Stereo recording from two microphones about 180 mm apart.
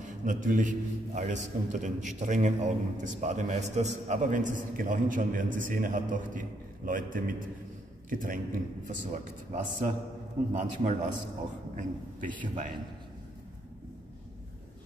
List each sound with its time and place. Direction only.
0.0 s a man's voice: 45° right (ahead or behind)
12.3 s a man's voice: 45° right (ahead or behind)